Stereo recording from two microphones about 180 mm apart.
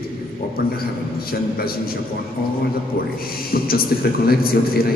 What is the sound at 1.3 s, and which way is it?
Speech, 55° left (ahead or behind).